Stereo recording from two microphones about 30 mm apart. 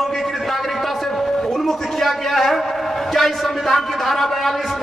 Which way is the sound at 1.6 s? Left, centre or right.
Centre.